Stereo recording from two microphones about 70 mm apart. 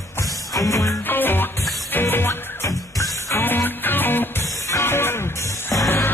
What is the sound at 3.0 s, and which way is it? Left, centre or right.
Music, left.